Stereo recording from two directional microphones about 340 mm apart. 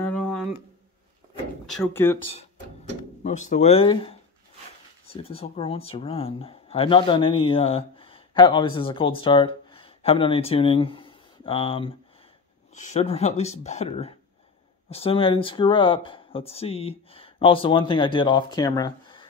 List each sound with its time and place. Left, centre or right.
0.0 s a sound: centre
1.7 s speech: centre
2.3 s speech: left